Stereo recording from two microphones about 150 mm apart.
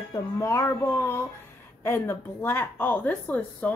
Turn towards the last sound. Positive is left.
turn(degrees=10)  # may be behind; listen again after turning